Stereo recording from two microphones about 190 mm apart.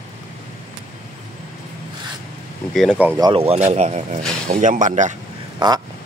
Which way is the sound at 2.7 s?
Centre (ahead or behind).